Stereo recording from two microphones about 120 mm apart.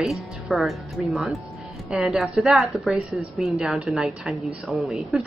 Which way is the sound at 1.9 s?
Centre (ahead or behind).